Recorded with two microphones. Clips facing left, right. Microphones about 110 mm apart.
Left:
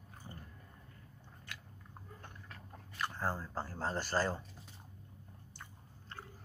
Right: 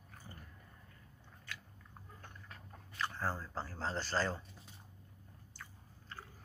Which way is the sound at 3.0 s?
15° left (ahead or behind).